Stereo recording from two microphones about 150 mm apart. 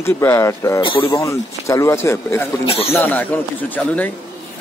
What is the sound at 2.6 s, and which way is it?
Speech, 40° left (ahead or behind).